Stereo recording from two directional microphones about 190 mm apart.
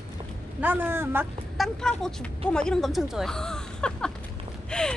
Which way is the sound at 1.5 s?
Centre (ahead or behind).